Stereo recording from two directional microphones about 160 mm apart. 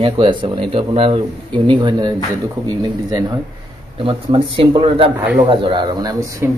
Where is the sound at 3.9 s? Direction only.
35° right (ahead or behind).